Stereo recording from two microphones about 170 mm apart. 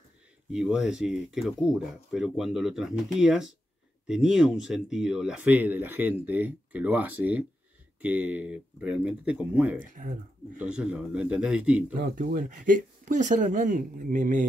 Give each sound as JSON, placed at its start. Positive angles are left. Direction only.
{"t": 0.5, "sound": "speech", "side_deg": -5}
{"t": 10.0, "sound": "speech", "side_deg": -55}
{"t": 10.6, "sound": "speech", "side_deg": -5}
{"t": 12.0, "sound": "speech", "side_deg": -55}